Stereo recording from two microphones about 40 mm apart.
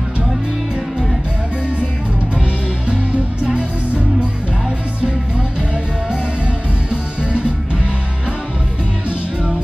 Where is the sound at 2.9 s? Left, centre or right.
Right.